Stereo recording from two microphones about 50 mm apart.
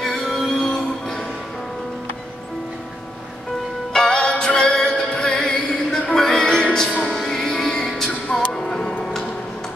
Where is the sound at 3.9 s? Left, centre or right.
Centre.